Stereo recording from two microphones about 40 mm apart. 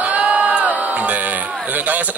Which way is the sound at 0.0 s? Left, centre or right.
Right.